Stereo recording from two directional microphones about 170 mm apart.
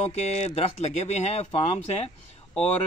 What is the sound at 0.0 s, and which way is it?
Speech, 40° left (ahead or behind).